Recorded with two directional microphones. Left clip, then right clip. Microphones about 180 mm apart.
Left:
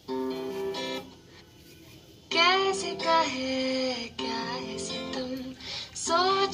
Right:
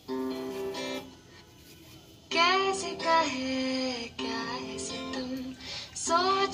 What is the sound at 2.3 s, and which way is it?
Child singing, 35° left (ahead or behind).